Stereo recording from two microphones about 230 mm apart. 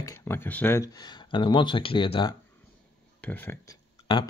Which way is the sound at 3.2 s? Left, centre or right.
Centre.